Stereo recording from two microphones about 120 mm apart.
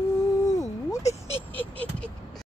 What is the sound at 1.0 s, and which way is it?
Speech, 65° left (ahead or behind).